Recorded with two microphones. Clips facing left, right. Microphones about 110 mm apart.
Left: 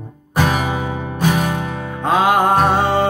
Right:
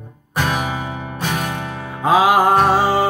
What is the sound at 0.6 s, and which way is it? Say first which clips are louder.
Music: left 3 dB; 25° left (ahead or behind).